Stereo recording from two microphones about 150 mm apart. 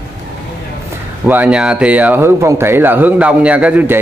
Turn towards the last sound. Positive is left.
turn(degrees=-10)  # may be behind; listen again after turning